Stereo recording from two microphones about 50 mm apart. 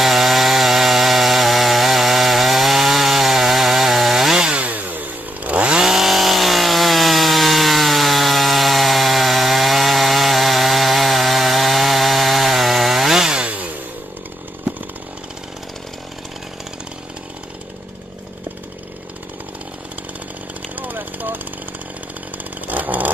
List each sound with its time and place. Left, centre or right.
0.0 s chainsaw: centre
4.6 s chainsaw: right
5.9 s chainsaw: centre
13.4 s chainsaw: right
20.7 s a sound: right
22.7 s chainsaw: right